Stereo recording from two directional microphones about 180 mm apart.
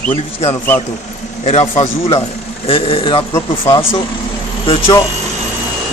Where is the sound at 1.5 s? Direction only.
35° left (ahead or behind).